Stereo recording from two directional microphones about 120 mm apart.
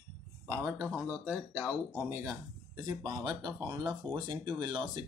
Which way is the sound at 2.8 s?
35° right (ahead or behind).